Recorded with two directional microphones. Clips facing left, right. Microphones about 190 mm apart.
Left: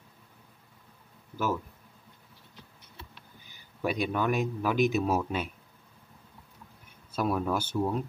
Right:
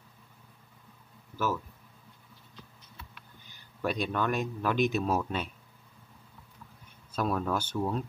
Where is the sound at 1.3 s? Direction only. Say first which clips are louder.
Left 1 dB; 15° left (ahead or behind).